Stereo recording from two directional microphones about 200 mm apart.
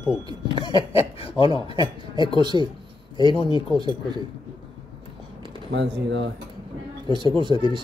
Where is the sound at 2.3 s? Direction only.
20° right (ahead or behind).